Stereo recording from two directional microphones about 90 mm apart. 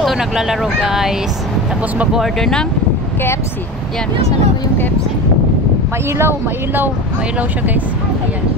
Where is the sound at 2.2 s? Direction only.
5° left (ahead or behind).